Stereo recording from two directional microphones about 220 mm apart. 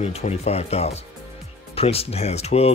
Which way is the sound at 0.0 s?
30° left (ahead or behind).